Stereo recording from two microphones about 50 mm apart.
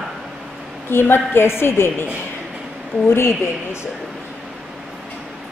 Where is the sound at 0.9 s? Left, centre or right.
Left.